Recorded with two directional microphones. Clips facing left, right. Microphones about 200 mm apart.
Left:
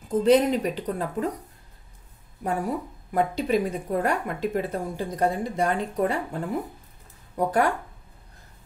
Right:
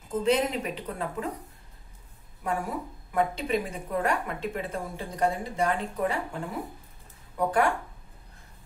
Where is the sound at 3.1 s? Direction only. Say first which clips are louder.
Left 3 dB; 40° left (ahead or behind).